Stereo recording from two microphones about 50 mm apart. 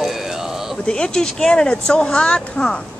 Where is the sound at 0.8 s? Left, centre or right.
Centre.